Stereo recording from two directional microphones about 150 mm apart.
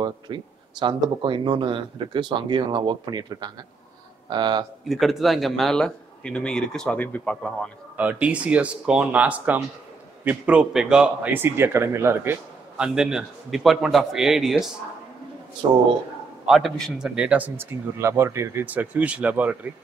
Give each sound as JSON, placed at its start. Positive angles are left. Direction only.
{"t": 0.0, "sound": "speech", "side_deg": -30}
{"t": 4.8, "sound": "a man's voice", "side_deg": 0}
{"t": 7.9, "sound": "a man's voice", "side_deg": -10}
{"t": 16.4, "sound": "speech", "side_deg": 0}